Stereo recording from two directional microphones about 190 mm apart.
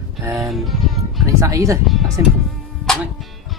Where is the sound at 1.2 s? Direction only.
15° right (ahead or behind).